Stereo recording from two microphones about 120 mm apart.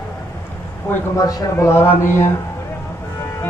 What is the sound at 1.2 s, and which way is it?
Speech, 30° left (ahead or behind).